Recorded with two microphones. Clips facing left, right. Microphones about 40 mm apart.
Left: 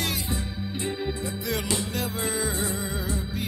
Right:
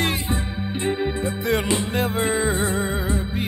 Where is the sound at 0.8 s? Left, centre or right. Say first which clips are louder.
Right 7 dB; right.